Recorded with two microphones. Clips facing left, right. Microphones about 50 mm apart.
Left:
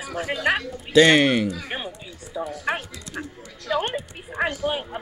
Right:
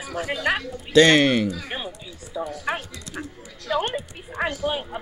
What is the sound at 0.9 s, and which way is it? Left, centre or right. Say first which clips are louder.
Speech: even; centre.